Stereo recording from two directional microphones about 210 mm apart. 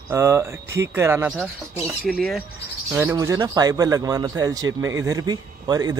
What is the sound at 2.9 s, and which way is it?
Speech, 10° right (ahead or behind).